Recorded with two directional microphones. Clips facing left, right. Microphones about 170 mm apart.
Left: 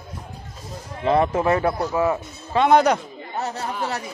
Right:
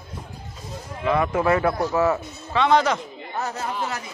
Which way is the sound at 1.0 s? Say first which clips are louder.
Left 2 dB; 30° left (ahead or behind).